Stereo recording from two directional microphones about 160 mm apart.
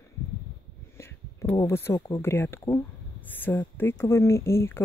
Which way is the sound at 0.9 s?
15° left (ahead or behind).